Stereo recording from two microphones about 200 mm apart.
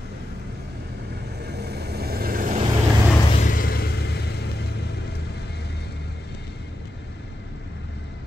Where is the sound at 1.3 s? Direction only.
55° right (ahead or behind).